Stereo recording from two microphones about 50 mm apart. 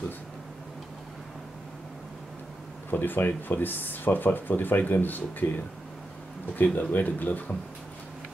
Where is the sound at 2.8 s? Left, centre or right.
Left.